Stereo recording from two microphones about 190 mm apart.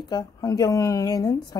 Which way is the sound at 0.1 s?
20° left (ahead or behind).